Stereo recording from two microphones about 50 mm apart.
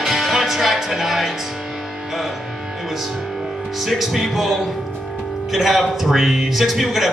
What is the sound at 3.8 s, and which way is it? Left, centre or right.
Speech, centre.